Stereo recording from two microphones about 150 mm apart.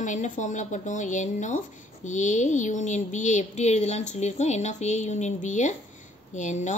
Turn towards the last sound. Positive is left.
turn(degrees=55)  # may be behind; listen again after turning